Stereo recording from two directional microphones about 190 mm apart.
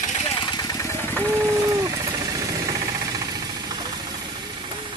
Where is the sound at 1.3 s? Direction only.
15° right (ahead or behind).